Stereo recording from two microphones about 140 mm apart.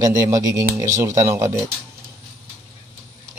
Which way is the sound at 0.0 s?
25° right (ahead or behind).